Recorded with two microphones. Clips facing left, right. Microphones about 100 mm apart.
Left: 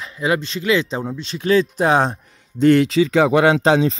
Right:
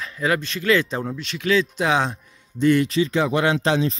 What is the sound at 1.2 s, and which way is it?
Speech, 30° left (ahead or behind).